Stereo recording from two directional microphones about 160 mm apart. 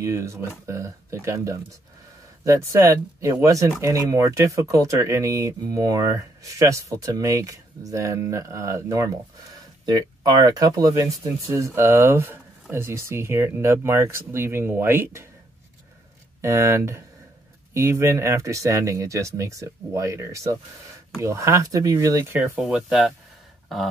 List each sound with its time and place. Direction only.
0.0 s speech: 20° right (ahead or behind)
16.3 s speech: 20° right (ahead or behind)